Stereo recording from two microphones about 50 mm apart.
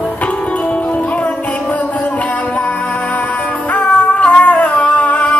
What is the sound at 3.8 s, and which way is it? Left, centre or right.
Music, left.